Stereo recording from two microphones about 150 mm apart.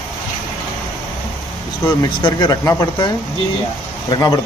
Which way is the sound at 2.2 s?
25° left (ahead or behind).